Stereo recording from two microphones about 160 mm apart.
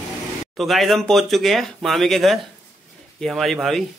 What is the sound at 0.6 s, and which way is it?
A man's voice, centre (ahead or behind).